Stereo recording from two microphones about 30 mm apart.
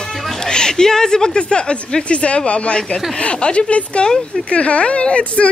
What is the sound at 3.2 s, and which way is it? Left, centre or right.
A woman's voice, left.